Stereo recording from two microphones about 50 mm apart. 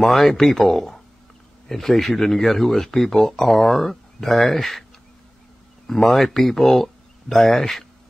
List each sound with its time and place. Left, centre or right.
0.0 s speech: centre
5.9 s speech: centre